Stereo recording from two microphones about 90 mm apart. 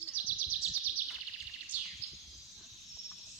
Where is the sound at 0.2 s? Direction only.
20° right (ahead or behind).